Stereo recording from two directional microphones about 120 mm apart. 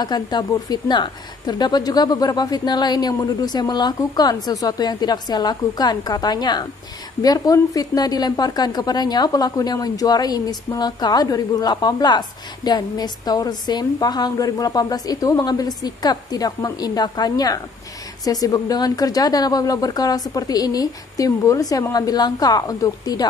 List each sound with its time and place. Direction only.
0.0 s a woman's voice: 35° left (ahead or behind)